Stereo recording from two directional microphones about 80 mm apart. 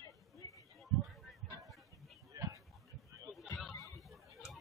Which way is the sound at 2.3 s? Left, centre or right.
Right.